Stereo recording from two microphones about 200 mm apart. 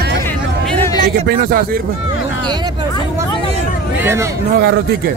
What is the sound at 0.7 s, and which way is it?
Speech, 10° left (ahead or behind).